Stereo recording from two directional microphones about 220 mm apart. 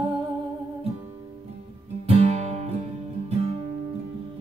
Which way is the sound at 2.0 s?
30° right (ahead or behind).